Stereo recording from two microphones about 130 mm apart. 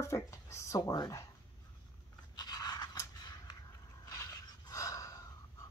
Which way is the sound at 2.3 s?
30° left (ahead or behind).